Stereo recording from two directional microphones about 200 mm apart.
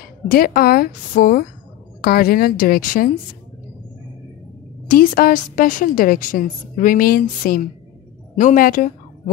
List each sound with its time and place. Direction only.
0.0 s a woman's voice: 45° left (ahead or behind)
4.8 s a woman's voice: 45° left (ahead or behind)